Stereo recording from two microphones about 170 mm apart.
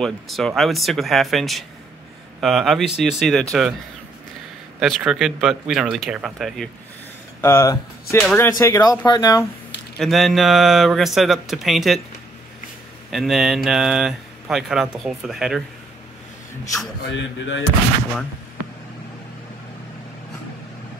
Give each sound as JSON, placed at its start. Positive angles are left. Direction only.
{"t": 0.0, "sound": "speech", "side_deg": 0}
{"t": 4.7, "sound": "speech", "side_deg": 0}
{"t": 7.4, "sound": "speech", "side_deg": 15}
{"t": 9.9, "sound": "speech", "side_deg": 0}
{"t": 13.1, "sound": "speech", "side_deg": 0}
{"t": 17.1, "sound": "speech", "side_deg": 90}